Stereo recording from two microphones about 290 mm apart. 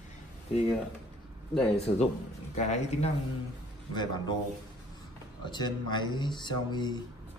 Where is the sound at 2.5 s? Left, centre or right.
Left.